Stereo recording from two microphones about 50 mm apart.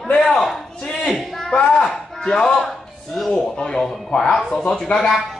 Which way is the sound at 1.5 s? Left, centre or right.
Centre.